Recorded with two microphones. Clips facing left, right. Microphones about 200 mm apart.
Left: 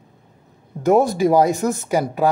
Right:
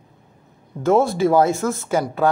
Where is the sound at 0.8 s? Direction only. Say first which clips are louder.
Left 1 dB; 15° left (ahead or behind).